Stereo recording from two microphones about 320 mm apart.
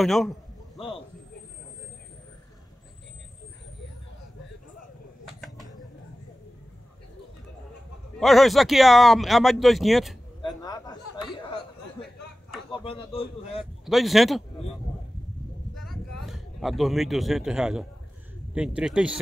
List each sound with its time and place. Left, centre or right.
0.0 s speech: centre
0.7 s a sound: centre
8.2 s speech: centre
10.6 s chuckle: centre
12.8 s a man's voice: centre
13.8 s speech: centre
15.7 s a sound: centre
18.5 s speech: centre